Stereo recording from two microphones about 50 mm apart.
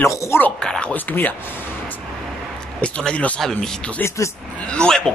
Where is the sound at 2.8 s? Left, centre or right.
Left.